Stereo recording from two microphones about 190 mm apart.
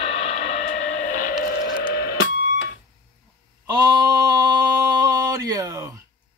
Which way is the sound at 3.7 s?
20° right (ahead or behind).